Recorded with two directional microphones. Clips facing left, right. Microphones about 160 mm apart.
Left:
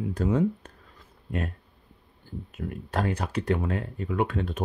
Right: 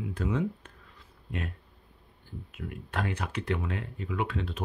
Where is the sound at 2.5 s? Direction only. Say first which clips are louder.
Left 5 dB; 40° left (ahead or behind).